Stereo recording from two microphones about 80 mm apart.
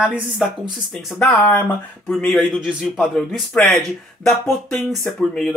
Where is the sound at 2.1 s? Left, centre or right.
Centre.